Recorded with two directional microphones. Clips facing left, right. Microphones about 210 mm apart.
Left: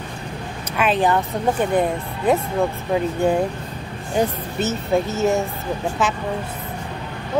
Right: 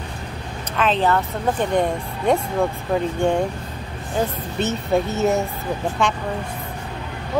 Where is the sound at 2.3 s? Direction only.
5° left (ahead or behind).